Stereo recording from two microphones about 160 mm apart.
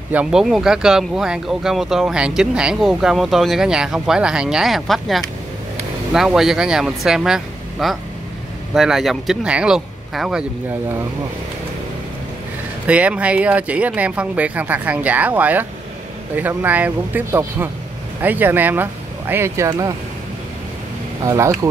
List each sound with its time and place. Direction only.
0.1 s speech: 5° right (ahead or behind)
12.8 s speech: 10° right (ahead or behind)
21.2 s speech: 20° right (ahead or behind)